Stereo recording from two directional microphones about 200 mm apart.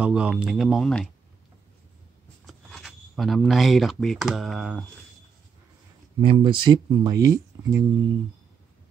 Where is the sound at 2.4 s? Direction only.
Centre (ahead or behind).